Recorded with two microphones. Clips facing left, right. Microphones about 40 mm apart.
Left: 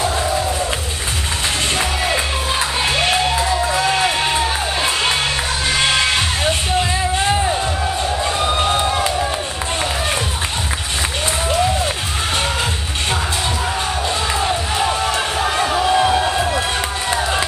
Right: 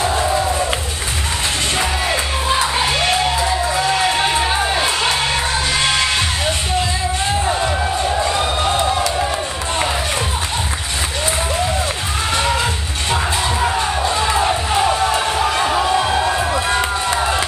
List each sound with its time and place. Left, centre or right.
0.1 s music: centre
4.4 s music: centre
8.5 s a sound: centre
13.1 s music: centre
15.6 s music: centre